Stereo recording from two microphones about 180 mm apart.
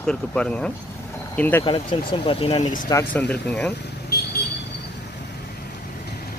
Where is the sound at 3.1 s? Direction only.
5° left (ahead or behind).